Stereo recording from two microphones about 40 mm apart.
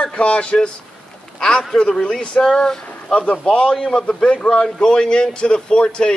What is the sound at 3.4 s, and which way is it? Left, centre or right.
Speech, left.